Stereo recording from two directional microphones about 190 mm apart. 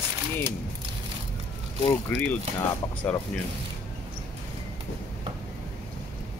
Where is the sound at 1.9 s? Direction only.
10° left (ahead or behind).